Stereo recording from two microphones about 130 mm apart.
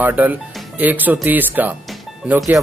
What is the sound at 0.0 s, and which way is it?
Speech, 15° right (ahead or behind).